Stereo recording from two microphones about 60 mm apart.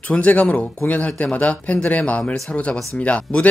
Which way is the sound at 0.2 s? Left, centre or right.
Left.